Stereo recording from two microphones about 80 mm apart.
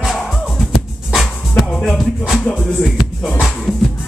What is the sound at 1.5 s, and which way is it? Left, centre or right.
Music, centre.